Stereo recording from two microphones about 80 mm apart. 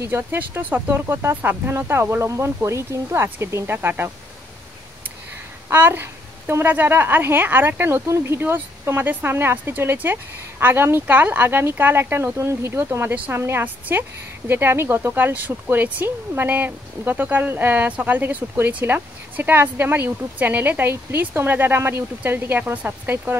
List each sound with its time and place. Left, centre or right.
0.0 s speech: right
5.7 s a sound: right
6.6 s speech: right
13.1 s speech: centre